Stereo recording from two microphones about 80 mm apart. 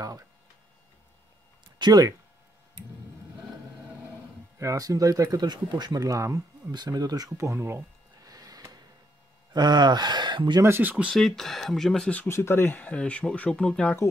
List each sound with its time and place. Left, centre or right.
1.8 s speech: right
4.6 s speech: right
6.7 s speech: right
7.4 s a sound: right
8.3 s a sound: right
9.5 s speech: right
10.8 s speech: centre
11.1 s speech: centre
12.3 s speech: left; by 13.9 s centre